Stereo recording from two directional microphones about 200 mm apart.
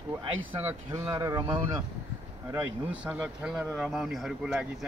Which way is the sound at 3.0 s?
5° right (ahead or behind).